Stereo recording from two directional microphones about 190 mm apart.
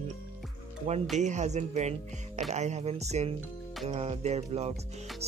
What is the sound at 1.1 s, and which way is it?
Speech, 40° right (ahead or behind).